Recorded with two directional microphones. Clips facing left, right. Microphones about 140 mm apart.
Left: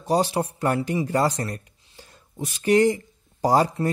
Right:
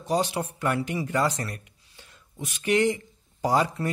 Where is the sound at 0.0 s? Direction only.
35° left (ahead or behind).